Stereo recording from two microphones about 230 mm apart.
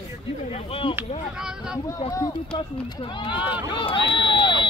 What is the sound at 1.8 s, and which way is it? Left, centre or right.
A man's voice, centre.